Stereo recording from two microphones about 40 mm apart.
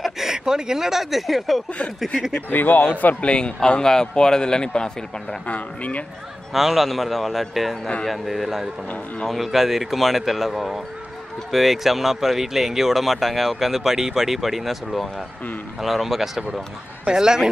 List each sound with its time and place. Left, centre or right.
0.0 s speech: centre
2.5 s speech: left
3.3 s a man's voice: left
5.5 s speech: left
6.5 s speech: centre
17.0 s speech: centre